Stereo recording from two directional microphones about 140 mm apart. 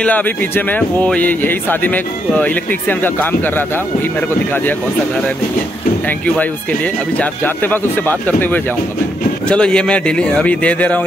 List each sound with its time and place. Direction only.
0.0 s speech: 10° left (ahead or behind)
6.0 s speech: 10° left (ahead or behind)